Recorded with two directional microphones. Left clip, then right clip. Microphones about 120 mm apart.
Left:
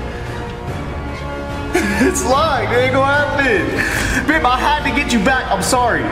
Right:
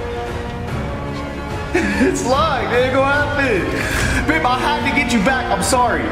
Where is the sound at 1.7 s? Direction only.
15° left (ahead or behind).